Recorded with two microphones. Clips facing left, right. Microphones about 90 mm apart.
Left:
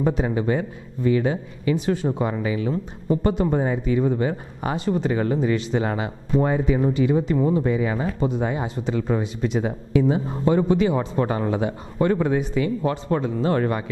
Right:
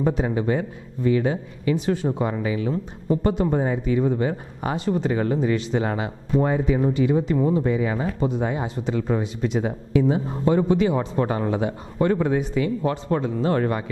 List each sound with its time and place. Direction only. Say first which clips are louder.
0.0 s speech: even; 20° left (ahead or behind)